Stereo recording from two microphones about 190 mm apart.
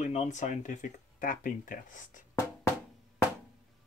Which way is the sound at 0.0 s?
40° left (ahead or behind).